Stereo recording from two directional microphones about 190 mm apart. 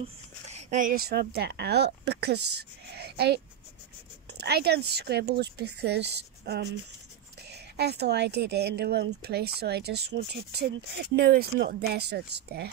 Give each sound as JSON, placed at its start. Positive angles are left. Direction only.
{"t": 0.5, "sound": "speech", "side_deg": -40}